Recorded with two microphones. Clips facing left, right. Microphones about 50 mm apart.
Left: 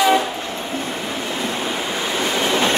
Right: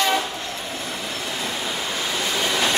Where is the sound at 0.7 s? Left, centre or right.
Left.